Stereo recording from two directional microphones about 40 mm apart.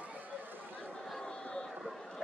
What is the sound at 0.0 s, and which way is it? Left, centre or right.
Chatter, right.